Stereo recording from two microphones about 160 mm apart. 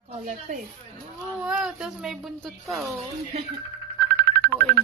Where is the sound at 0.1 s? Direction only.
50° right (ahead or behind).